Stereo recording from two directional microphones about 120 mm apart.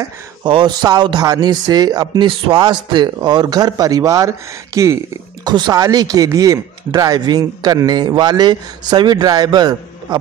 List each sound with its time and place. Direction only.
0.5 s speech: 40° right (ahead or behind)
5.4 s speech: 35° right (ahead or behind)